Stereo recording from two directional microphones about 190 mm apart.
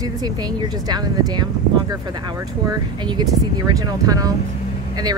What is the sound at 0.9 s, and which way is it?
Speech, 20° right (ahead or behind).